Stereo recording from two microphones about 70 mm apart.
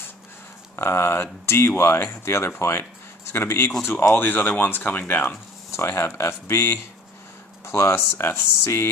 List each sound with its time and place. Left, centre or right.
0.7 s speech: left